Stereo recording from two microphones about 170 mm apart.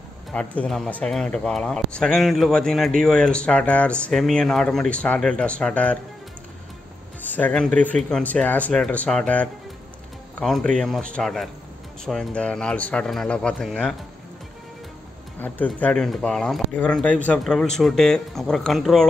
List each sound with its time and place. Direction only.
0.3 s speech: 5° left (ahead or behind)
7.2 s speech: 10° left (ahead or behind)
15.4 s speech: 10° left (ahead or behind)